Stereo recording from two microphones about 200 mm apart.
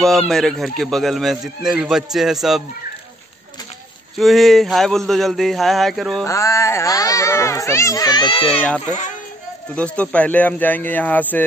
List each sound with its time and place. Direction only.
0.0 s speech: centre (ahead or behind)
4.2 s speech: centre (ahead or behind)
6.2 s a child's voice: 15° left (ahead or behind)
8.5 s a child's voice: 5° left (ahead or behind)